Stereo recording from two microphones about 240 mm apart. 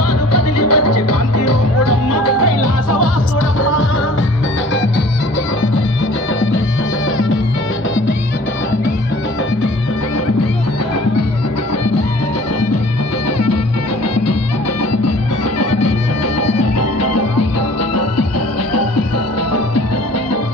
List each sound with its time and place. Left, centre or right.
0.3 s music: left
16.5 s music: left